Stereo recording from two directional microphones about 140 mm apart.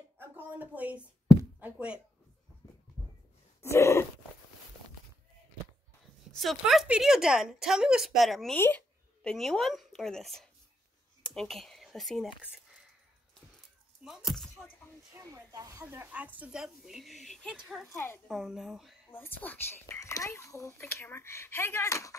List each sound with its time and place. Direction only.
0.2 s speech: 15° right (ahead or behind)
3.6 s a sound: 20° left (ahead or behind)
6.3 s a woman's voice: centre (ahead or behind)
8.5 s speech: 15° left (ahead or behind)
14.0 s a sound: centre (ahead or behind)
15.1 s snake: 25° right (ahead or behind)
15.8 s a woman's voice: 15° right (ahead or behind)
17.8 s a woman's voice: 15° left (ahead or behind)
18.3 s a woman's voice: centre (ahead or behind)
19.1 s speech: 15° left (ahead or behind)